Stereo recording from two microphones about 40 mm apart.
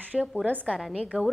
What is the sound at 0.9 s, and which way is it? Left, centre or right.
Speech, right.